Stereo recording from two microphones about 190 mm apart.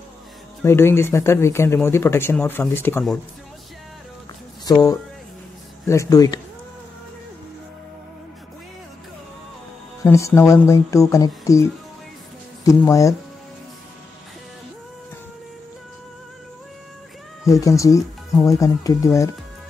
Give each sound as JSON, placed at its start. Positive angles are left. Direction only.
{"t": 0.7, "sound": "speech", "side_deg": 15}
{"t": 5.9, "sound": "speech", "side_deg": 15}
{"t": 10.0, "sound": "speech", "side_deg": 15}
{"t": 17.5, "sound": "speech", "side_deg": 15}